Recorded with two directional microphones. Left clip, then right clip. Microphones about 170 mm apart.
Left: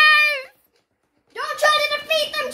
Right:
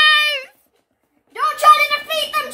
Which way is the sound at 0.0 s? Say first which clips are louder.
Right 1 dB; 15° left (ahead or behind).